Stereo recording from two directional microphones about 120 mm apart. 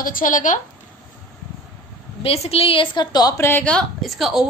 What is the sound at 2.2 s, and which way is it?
A woman's voice, 55° left (ahead or behind).